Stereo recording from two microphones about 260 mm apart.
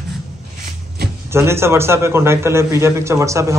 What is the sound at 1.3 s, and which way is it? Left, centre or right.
A man's voice, centre.